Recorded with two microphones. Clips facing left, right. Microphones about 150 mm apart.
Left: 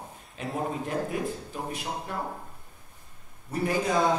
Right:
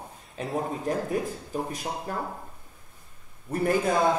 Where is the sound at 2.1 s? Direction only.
40° right (ahead or behind).